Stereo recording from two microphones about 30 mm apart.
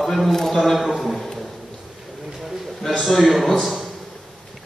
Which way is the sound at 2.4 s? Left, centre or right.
Centre.